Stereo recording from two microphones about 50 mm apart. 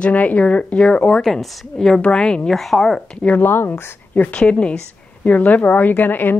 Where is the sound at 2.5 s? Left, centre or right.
Centre.